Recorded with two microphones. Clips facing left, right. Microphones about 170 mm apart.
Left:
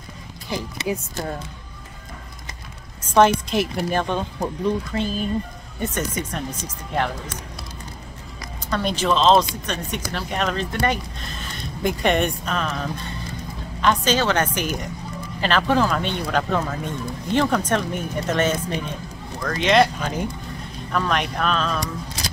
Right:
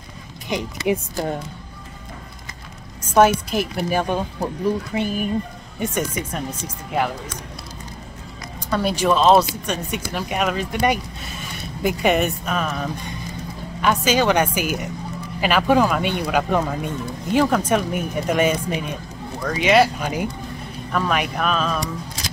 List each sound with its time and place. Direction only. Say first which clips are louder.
0.5 s speech: right 3 dB; 20° right (ahead or behind)
3.2 s speech: right 1 dB; 5° right (ahead or behind)
8.6 s speech: right 2 dB; 10° right (ahead or behind)